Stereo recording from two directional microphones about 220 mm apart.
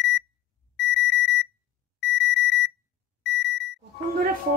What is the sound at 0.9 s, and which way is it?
Alarm, 55° left (ahead or behind).